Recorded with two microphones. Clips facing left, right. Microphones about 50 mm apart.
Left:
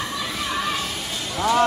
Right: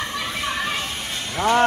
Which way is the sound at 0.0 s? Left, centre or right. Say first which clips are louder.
Right 1 dB; right.